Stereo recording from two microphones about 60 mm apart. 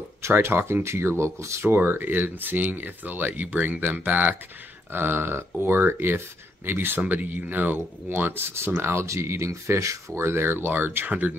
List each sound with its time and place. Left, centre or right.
0.2 s speech: right
4.9 s speech: right
9.0 s speech: right